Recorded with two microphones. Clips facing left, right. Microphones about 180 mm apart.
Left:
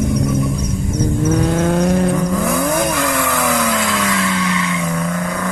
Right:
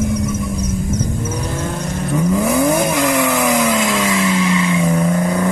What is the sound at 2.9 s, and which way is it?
Vehicle, 20° right (ahead or behind).